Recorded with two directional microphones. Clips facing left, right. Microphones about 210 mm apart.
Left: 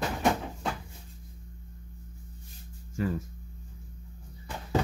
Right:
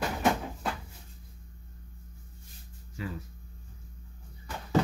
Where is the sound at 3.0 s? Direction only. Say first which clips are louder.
Left 8 dB; 45° left (ahead or behind).